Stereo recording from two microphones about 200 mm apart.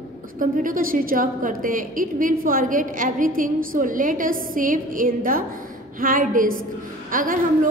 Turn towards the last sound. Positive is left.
turn(degrees=-40)  # may be behind; listen again after turning